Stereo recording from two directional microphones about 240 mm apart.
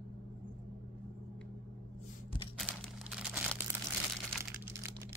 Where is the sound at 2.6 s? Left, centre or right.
Centre.